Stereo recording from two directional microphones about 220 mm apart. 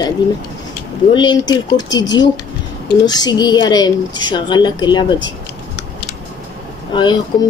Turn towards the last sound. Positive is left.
turn(degrees=20)  # may be behind; listen again after turning